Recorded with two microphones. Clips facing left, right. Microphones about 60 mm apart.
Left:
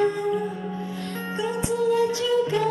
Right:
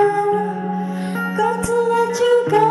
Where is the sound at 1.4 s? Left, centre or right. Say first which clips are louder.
Right 7 dB; centre.